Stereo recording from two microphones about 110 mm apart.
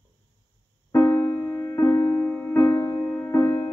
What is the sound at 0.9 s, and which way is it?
Music, 20° left (ahead or behind).